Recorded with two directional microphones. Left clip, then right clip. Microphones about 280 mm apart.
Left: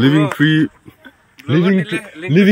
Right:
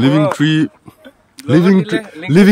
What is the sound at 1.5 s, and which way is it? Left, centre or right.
Speech, right.